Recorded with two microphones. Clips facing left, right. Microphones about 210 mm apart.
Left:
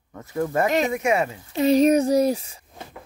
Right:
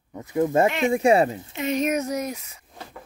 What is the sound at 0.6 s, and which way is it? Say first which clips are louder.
Speech: even; 40° left (ahead or behind).